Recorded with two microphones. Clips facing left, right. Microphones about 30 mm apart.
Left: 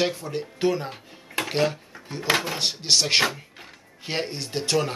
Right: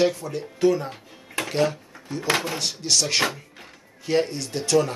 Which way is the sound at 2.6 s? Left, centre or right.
Left.